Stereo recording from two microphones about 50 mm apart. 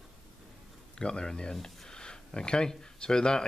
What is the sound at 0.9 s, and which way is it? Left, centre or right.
Speech, centre.